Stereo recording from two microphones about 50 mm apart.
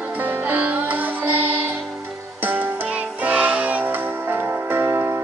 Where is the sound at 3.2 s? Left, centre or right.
Right.